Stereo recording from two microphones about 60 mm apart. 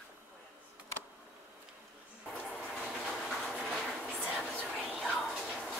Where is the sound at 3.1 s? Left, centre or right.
Centre.